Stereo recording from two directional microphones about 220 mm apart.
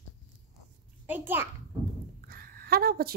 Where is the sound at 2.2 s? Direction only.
45° right (ahead or behind).